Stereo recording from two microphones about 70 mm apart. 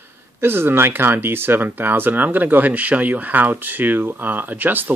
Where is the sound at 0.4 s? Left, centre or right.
Right.